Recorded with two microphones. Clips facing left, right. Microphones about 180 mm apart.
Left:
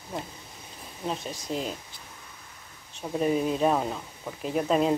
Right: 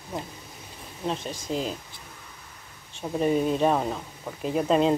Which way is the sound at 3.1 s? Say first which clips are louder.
Right 2 dB; centre (ahead or behind).